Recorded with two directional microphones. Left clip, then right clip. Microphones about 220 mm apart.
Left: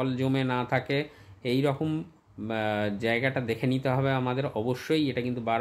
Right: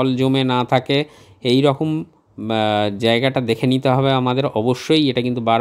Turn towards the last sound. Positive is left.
turn(degrees=-35)  # may be behind; listen again after turning